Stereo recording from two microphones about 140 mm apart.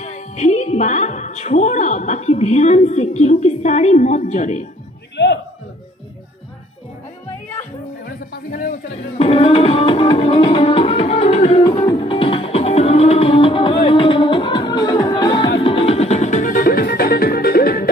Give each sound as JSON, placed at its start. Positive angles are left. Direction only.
{"t": 0.0, "sound": "a woman's voice", "side_deg": 55}
{"t": 8.3, "sound": "a sound", "side_deg": 85}
{"t": 9.2, "sound": "music", "side_deg": 45}
{"t": 11.6, "sound": "music", "side_deg": 35}